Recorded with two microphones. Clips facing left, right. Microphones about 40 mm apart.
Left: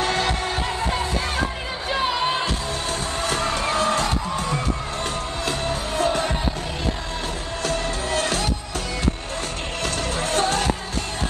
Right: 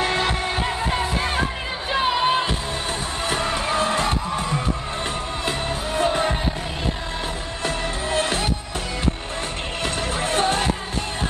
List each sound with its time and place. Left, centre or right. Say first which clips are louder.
0.0 s music: right 1 dB; centre
7.6 s music: even; right
9.8 s music: right 1 dB; right